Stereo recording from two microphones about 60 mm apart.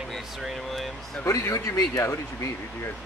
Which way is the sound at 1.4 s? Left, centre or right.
Left.